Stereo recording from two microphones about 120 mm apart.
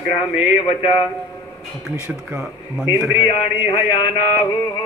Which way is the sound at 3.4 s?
45° left (ahead or behind).